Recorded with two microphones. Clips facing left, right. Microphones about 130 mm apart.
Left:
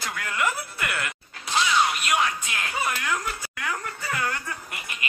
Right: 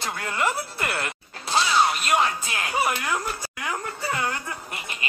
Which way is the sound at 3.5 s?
25° right (ahead or behind).